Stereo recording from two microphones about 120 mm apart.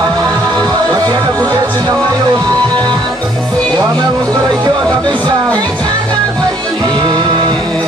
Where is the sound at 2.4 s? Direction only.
30° right (ahead or behind).